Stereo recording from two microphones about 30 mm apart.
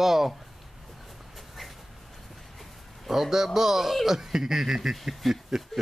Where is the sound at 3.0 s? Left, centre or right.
Centre.